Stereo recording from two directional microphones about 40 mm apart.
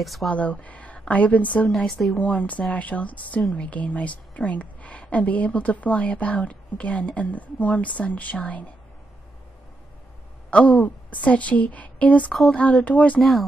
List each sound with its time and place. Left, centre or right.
0.0 s speech: centre
0.3 s a woman's voice: left
1.9 s speech: centre
2.1 s a woman's voice: left
10.5 s a woman's voice: left
13.2 s speech: centre